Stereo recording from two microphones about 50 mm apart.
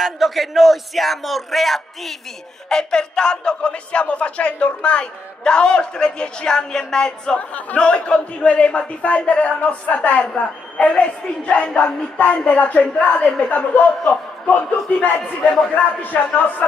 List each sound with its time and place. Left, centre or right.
0.0 s a man's voice: centre
2.7 s a man's voice: centre; by 16.6 s left